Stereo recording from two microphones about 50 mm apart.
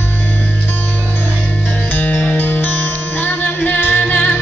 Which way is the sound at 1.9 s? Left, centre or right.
Left.